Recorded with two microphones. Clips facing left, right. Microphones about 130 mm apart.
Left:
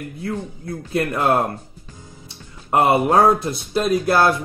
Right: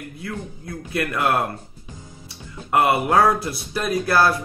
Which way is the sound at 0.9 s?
25° left (ahead or behind).